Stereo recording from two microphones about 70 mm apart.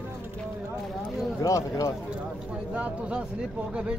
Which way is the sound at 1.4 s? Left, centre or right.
Left.